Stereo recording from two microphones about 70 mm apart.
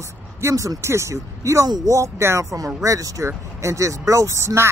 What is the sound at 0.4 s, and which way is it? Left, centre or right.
Speech, right.